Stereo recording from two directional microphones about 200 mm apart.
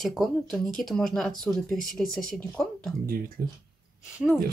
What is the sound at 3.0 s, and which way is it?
Speech, 50° right (ahead or behind).